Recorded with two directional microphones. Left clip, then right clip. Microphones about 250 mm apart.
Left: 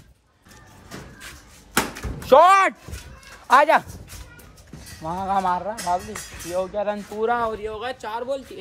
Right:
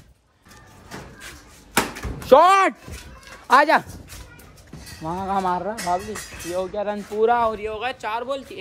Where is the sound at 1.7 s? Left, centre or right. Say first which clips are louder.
Right 1 dB; centre.